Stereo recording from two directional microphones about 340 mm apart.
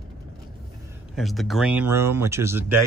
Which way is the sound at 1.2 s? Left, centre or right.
Centre.